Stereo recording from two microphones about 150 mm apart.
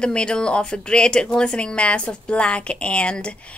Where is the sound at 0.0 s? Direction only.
5° left (ahead or behind).